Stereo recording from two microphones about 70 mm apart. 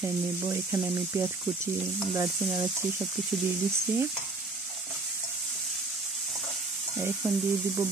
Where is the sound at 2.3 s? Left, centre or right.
Centre.